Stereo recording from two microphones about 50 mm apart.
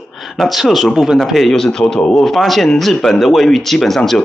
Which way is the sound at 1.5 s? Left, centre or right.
Centre.